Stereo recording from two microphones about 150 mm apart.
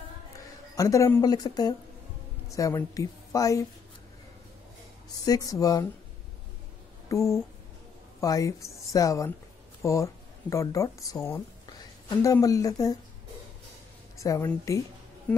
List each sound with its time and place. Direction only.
0.7 s speech: 20° left (ahead or behind)
5.2 s speech: 25° left (ahead or behind)
7.1 s a sound: 20° left (ahead or behind)
8.2 s speech: 20° left (ahead or behind)
14.1 s a woman's voice: 20° left (ahead or behind)